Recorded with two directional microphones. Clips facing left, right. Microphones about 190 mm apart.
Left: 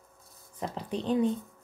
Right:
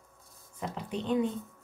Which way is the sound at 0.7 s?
35° left (ahead or behind).